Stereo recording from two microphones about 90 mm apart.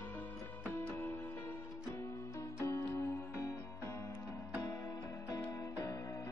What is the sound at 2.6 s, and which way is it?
Music, 30° left (ahead or behind).